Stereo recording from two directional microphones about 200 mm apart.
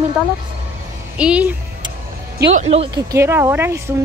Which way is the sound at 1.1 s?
5° right (ahead or behind).